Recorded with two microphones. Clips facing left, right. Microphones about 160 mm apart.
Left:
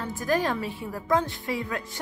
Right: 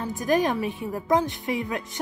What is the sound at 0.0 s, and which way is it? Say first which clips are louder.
A woman's voice: right 3 dB; 20° right (ahead or behind).